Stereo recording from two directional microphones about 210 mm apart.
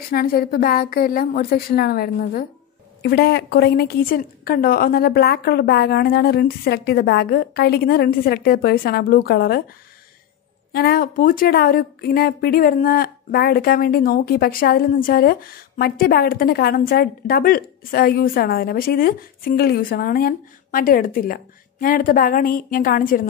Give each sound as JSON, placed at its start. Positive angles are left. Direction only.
{"t": 0.1, "sound": "a woman's voice", "side_deg": 45}
{"t": 10.7, "sound": "a woman's voice", "side_deg": 45}